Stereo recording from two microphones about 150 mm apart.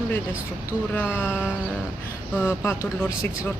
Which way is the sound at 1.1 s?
15° left (ahead or behind).